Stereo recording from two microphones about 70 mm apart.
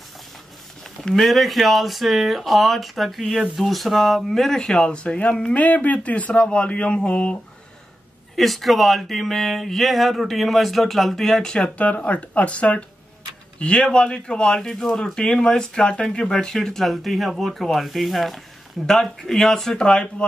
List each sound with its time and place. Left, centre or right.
1.0 s speech: centre
8.4 s speech: centre
11.8 s speech: left